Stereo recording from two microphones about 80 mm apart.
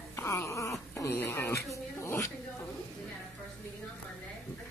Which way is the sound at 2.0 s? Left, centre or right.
Left.